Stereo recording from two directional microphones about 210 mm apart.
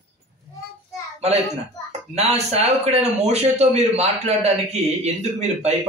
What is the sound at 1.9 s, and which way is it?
Speech, 30° right (ahead or behind).